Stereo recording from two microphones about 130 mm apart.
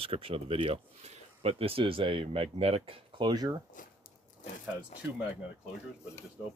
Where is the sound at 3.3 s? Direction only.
30° right (ahead or behind).